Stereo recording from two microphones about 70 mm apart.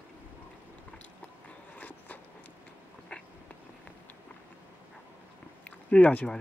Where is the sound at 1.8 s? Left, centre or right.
Left.